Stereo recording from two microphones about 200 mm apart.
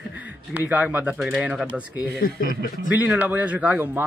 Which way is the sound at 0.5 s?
5° right (ahead or behind).